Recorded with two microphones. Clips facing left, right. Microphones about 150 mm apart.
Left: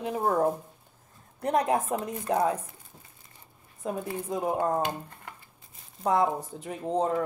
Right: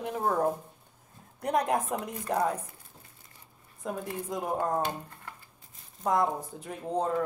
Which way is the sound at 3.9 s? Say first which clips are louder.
Left 3 dB; 10° left (ahead or behind).